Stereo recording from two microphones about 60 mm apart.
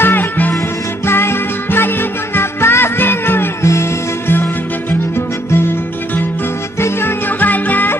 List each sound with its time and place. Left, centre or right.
0.0 s music: left
0.6 s music: left
3.6 s music: left
7.2 s music: left